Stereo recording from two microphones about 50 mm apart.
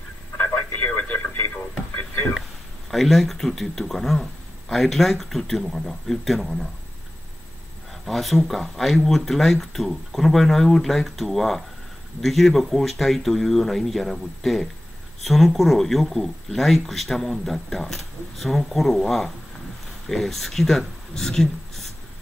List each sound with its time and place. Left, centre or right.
0.4 s radio: left
1.5 s radio: left
2.9 s speech: centre
8.0 s speech: centre